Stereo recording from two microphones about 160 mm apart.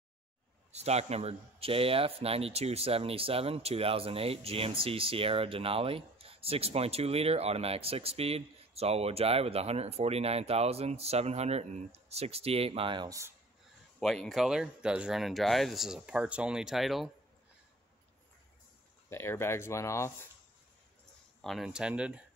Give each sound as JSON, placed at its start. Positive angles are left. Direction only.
{"t": 0.7, "sound": "a man's voice", "side_deg": -40}
{"t": 13.9, "sound": "speech", "side_deg": 5}
{"t": 19.0, "sound": "speech", "side_deg": 15}
{"t": 21.4, "sound": "speech", "side_deg": 0}